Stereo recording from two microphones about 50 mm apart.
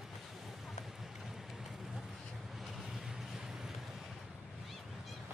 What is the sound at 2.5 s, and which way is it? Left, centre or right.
Vehicle, centre.